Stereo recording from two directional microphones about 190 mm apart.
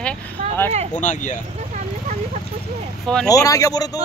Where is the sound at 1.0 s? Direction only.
40° left (ahead or behind).